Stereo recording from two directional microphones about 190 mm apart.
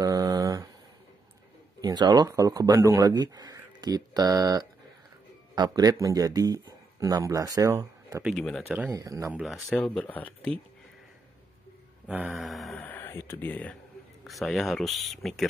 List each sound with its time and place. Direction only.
0.0 s a sound: 20° right (ahead or behind)
1.8 s a man's voice: 20° right (ahead or behind)
8.4 s speech: 5° left (ahead or behind)
8.6 s speech: 10° right (ahead or behind)
9.3 s speech: 5° right (ahead or behind)
12.1 s speech: 5° right (ahead or behind)